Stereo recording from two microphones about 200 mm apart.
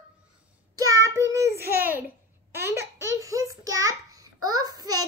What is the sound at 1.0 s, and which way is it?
Child singing, 15° right (ahead or behind).